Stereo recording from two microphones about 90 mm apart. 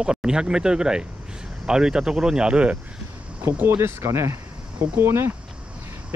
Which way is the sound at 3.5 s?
25° right (ahead or behind).